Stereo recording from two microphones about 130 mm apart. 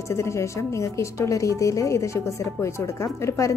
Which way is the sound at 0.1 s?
20° left (ahead or behind).